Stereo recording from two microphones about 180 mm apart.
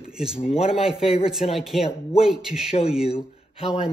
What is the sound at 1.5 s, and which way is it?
Speech, centre (ahead or behind).